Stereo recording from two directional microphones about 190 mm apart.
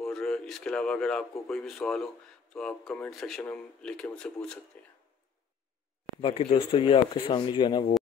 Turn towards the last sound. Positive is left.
turn(degrees=20)  # may be behind; listen again after turning